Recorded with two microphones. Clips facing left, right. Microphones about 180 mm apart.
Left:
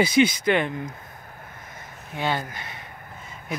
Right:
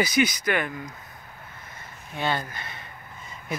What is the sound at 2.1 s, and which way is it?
Speech, 15° left (ahead or behind).